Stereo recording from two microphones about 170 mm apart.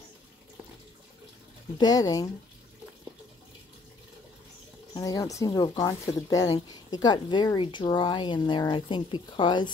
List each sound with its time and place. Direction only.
1.8 s speech: 20° left (ahead or behind)
4.9 s speech: 20° left (ahead or behind)